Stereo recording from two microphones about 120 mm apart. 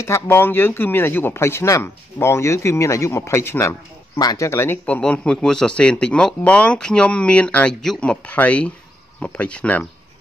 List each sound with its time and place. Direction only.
0.0 s speech: 20° left (ahead or behind)
4.2 s speech: 35° left (ahead or behind)
4.5 s speech: 20° left (ahead or behind)
4.8 s a man's voice: 10° left (ahead or behind)